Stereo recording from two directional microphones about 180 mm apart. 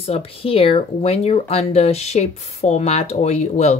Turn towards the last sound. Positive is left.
turn(degrees=40)  # may be behind; listen again after turning